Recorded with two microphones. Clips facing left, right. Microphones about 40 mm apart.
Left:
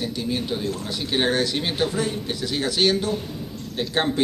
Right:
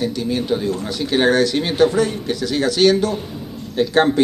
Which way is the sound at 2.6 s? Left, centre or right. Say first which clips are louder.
Right 7 dB; centre.